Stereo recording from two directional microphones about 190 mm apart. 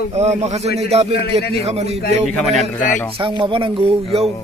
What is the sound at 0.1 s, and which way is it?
A man's voice, 35° right (ahead or behind).